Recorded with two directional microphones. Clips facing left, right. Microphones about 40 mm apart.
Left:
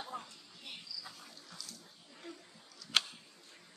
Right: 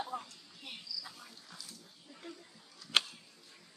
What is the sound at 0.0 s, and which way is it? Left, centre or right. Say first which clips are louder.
Music: right 4 dB; centre.